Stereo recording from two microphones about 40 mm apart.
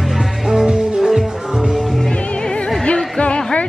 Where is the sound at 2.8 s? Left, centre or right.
Left.